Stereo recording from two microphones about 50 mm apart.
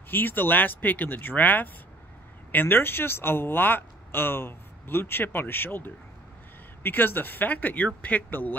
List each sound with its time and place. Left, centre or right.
0.1 s speech: left